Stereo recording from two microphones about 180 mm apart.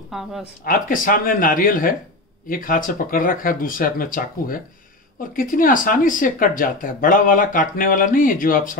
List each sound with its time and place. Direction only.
0.1 s speech: centre (ahead or behind)
0.7 s speech: 50° left (ahead or behind)